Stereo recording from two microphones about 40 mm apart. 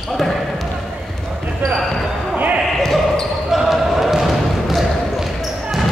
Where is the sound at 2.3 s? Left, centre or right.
Right.